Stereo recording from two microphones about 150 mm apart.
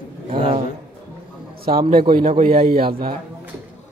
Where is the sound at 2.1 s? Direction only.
65° right (ahead or behind).